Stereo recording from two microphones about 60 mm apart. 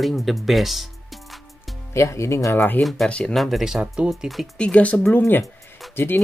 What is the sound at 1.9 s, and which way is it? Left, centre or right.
Speech, left.